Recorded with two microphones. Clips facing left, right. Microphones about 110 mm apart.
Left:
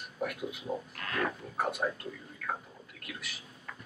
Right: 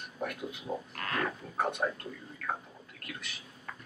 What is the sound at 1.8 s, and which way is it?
Speech, 5° right (ahead or behind).